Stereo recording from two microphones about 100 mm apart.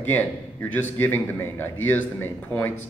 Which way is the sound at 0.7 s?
20° left (ahead or behind).